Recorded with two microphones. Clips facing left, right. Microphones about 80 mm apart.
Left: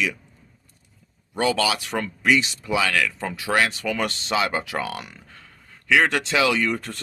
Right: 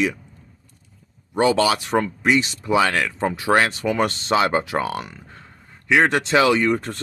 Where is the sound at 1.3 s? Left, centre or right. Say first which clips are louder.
Right 4 dB; right.